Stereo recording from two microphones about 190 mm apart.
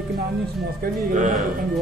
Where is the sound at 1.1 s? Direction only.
40° right (ahead or behind).